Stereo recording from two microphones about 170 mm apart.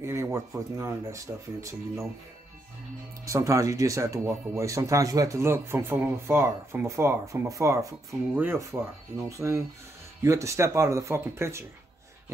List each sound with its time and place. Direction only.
0.0 s speech: 15° right (ahead or behind)
3.3 s speech: 20° right (ahead or behind)